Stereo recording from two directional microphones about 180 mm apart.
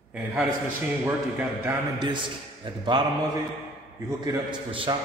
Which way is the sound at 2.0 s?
25° right (ahead or behind).